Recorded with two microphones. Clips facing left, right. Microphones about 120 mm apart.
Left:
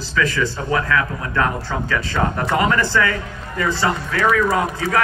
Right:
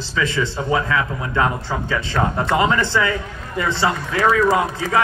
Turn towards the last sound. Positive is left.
turn(degrees=-25)  # may be behind; listen again after turning